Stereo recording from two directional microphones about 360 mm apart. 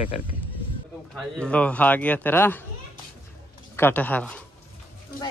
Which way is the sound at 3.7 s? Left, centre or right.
Centre.